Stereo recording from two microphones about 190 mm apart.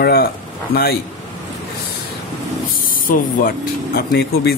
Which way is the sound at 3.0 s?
45° left (ahead or behind).